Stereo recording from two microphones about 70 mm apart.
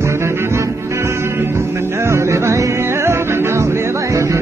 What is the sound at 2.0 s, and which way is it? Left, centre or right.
Music, right.